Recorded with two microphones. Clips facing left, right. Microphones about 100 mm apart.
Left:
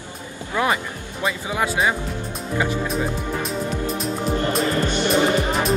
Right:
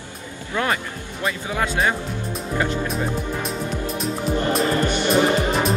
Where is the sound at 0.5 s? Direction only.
15° left (ahead or behind).